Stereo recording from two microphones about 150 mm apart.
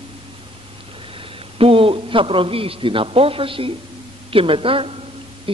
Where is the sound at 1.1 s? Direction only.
40° right (ahead or behind).